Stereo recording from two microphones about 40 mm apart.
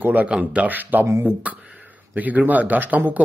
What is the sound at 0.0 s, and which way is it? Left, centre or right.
Speech, right.